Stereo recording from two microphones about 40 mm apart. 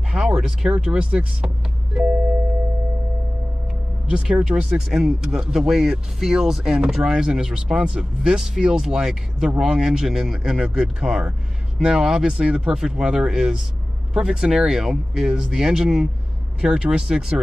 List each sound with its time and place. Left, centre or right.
0.1 s speech: centre
4.0 s speech: centre